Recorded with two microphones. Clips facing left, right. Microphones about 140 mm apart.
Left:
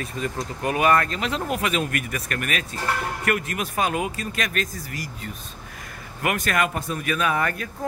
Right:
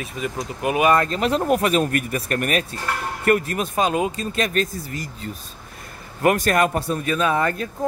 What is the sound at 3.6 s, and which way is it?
A man's voice, 25° right (ahead or behind).